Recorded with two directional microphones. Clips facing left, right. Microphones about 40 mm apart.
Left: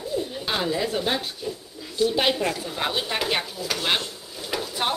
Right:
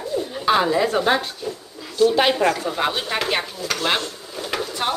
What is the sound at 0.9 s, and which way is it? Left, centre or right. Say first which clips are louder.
Speech: right 6 dB; right.